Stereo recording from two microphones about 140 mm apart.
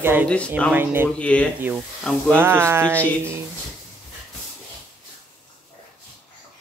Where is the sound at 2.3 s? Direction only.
15° right (ahead or behind).